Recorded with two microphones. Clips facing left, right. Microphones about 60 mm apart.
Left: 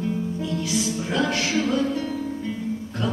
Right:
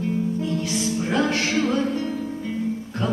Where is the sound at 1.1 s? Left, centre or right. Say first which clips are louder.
Right 1 dB; right.